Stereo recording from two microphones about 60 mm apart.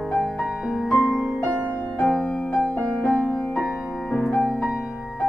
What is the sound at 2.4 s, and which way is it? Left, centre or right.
Music, left.